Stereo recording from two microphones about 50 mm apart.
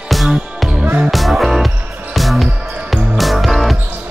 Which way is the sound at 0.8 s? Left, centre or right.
Right.